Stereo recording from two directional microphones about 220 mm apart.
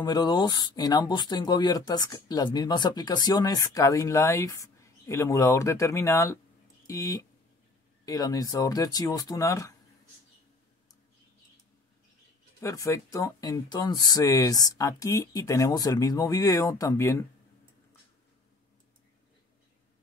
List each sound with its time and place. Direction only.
0.0 s speech: 20° left (ahead or behind)
12.5 s speech: 15° left (ahead or behind)